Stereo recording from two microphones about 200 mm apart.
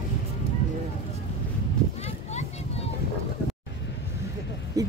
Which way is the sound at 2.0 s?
35° left (ahead or behind).